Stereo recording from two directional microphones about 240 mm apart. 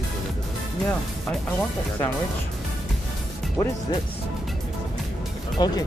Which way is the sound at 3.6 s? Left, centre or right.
Centre.